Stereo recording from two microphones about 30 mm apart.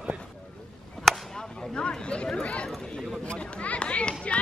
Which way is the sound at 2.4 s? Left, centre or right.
Left.